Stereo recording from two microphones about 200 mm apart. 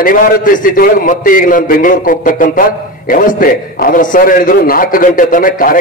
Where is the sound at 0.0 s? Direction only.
45° left (ahead or behind).